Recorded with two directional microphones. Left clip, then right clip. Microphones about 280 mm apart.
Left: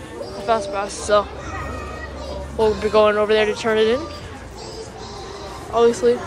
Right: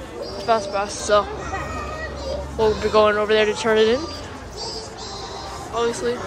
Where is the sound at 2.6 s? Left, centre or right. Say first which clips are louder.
Left 1 dB; centre.